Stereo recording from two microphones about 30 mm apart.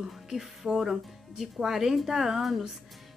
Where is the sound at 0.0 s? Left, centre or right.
Centre.